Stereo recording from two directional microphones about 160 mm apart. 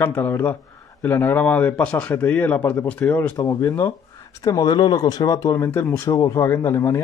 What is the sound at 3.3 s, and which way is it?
Speech, 25° left (ahead or behind).